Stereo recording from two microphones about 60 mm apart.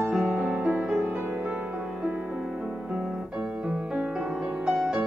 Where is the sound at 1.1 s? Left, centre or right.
Right.